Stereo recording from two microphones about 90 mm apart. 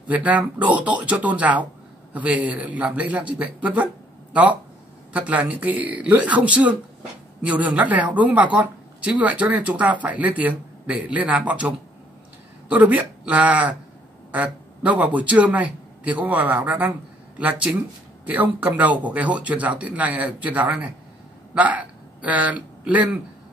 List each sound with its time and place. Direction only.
0.1 s a man's voice: 15° right (ahead or behind)